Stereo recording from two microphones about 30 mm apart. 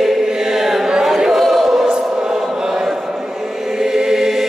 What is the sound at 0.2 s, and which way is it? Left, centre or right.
Choir, centre.